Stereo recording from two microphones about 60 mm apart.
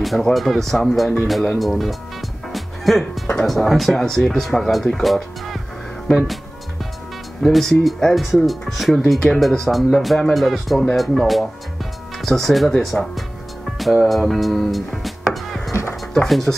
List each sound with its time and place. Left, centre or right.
0.0 s speech: centre
2.5 s music: centre
3.4 s speech: centre
7.4 s speech: centre
15.3 s wood: centre
16.1 s speech: centre